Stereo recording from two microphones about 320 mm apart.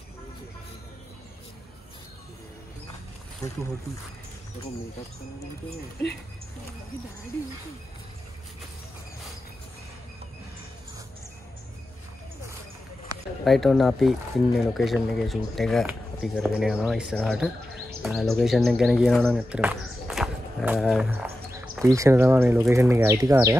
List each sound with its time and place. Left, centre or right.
3.4 s speech: centre
13.4 s speech: centre